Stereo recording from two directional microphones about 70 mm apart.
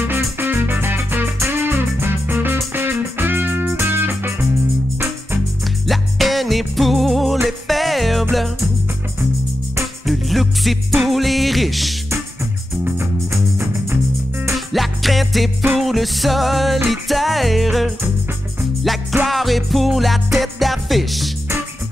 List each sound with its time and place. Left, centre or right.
0.0 s music: right
5.9 s music: centre
10.0 s music: centre
12.9 s music: right
14.7 s music: centre